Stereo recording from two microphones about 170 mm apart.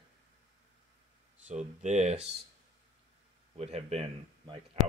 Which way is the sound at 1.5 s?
45° right (ahead or behind).